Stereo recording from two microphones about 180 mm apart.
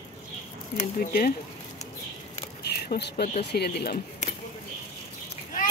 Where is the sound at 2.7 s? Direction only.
60° left (ahead or behind).